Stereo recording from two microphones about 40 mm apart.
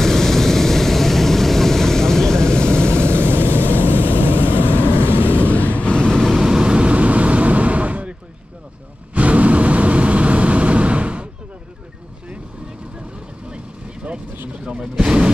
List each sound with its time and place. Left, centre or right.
0.0 s vehicle: centre; by 3.2 s left
3.2 s vehicle: right
3.7 s vehicle: right
5.5 s vehicle: left
6.4 s vehicle: centre
14.6 s vehicle: centre